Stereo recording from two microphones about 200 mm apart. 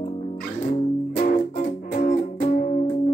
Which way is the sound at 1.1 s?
40° left (ahead or behind).